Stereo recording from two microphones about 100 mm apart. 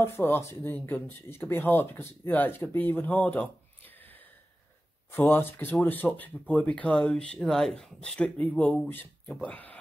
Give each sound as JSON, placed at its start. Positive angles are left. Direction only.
{"t": 0.0, "sound": "speech", "side_deg": 25}